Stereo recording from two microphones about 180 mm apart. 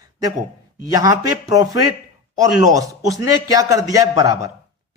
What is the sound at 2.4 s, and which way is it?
Speech, 20° right (ahead or behind).